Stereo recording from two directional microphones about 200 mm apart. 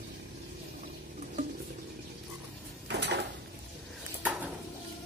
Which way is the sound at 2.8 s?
60° right (ahead or behind).